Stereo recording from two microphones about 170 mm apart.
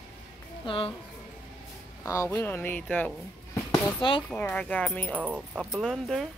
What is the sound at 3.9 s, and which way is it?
Speech, 30° left (ahead or behind).